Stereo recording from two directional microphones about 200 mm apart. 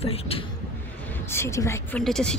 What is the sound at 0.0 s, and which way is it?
Speech, 30° left (ahead or behind).